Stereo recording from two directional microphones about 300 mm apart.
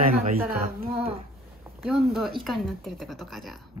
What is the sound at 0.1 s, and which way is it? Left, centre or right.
Speech, right.